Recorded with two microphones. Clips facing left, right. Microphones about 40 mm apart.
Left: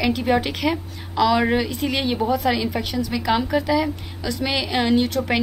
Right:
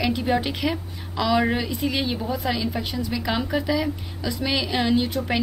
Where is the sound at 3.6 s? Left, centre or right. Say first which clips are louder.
Left 3 dB; left.